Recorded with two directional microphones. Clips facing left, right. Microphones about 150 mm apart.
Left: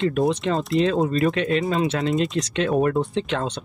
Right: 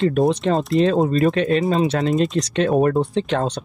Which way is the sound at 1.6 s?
25° right (ahead or behind).